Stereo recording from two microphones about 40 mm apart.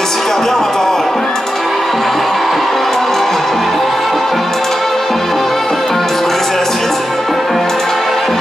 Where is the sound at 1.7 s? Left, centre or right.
Centre.